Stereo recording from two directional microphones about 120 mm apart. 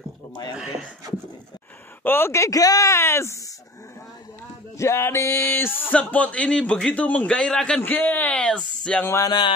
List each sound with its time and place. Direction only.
0.6 s a sound: 5° right (ahead or behind)
2.0 s speech: 20° left (ahead or behind)
4.7 s a man's voice: 20° left (ahead or behind)